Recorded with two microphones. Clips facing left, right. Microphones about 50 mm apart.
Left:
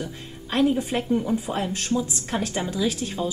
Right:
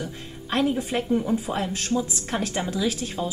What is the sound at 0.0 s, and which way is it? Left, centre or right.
Speech, centre.